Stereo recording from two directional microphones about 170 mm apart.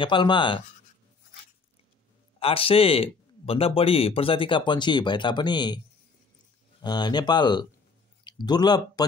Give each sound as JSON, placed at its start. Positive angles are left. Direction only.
{"t": 0.0, "sound": "speech", "side_deg": 30}
{"t": 2.4, "sound": "speech", "side_deg": 35}
{"t": 6.8, "sound": "speech", "side_deg": 25}